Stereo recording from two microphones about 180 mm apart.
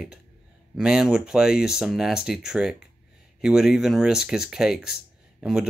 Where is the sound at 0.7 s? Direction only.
5° right (ahead or behind).